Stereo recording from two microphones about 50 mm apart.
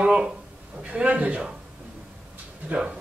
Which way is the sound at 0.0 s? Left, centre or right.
Centre.